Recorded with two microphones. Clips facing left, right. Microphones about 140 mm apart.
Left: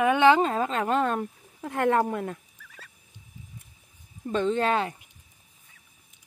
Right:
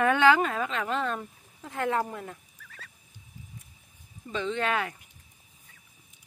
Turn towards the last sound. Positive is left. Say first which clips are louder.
# left 4 dB
turn(degrees=30)  # may be behind; listen again after turning